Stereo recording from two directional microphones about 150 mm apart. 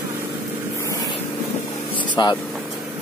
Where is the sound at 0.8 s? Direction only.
20° left (ahead or behind).